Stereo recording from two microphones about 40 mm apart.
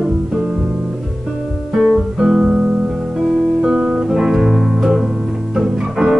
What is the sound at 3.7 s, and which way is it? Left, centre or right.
Music, right.